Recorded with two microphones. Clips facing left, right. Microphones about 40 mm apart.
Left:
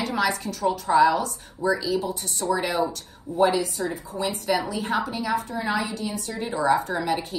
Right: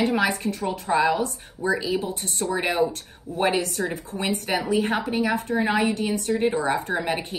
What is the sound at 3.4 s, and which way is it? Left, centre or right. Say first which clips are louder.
Speech: left 2 dB; right.